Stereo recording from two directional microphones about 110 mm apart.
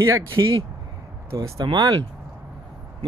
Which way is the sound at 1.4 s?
35° right (ahead or behind).